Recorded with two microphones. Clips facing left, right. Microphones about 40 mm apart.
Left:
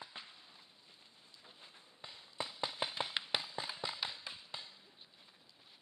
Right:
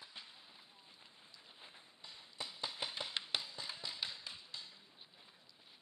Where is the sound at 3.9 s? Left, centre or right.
Centre.